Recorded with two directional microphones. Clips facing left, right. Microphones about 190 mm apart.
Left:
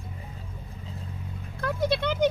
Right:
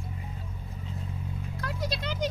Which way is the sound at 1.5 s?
55° left (ahead or behind).